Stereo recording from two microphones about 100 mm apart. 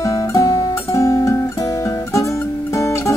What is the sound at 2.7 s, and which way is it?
Music, 30° left (ahead or behind).